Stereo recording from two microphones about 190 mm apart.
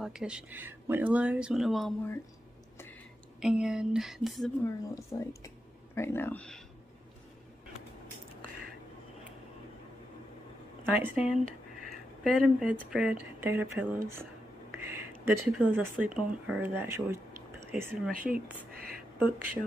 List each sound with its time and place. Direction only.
0.0 s speech: 5° right (ahead or behind)
3.3 s speech: 5° right (ahead or behind)
4.6 s speech: 15° left (ahead or behind)
10.9 s speech: 5° right (ahead or behind)
18.1 s speech: 50° right (ahead or behind)
18.7 s a sound: 50° right (ahead or behind)
19.1 s speech: 10° right (ahead or behind)